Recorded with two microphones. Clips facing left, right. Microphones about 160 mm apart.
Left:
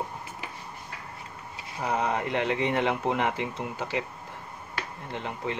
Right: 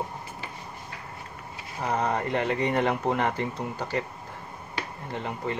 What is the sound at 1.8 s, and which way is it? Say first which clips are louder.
Speech: right 1 dB; 5° left (ahead or behind).